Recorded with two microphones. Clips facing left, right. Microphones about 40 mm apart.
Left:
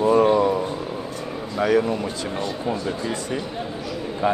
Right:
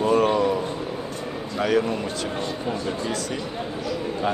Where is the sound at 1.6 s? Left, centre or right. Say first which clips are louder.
Left 2 dB; centre.